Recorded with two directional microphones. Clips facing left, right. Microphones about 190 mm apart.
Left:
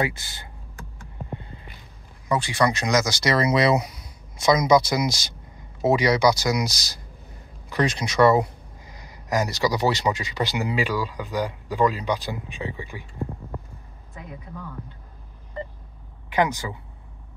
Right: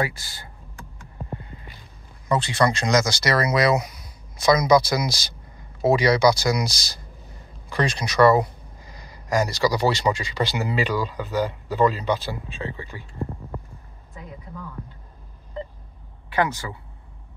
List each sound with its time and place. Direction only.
0.0 s speech: 20° left (ahead or behind)
2.2 s speech: 15° left (ahead or behind)
3.2 s speech: 25° left (ahead or behind)
7.7 s speech: 20° left (ahead or behind)
16.3 s speech: 15° left (ahead or behind)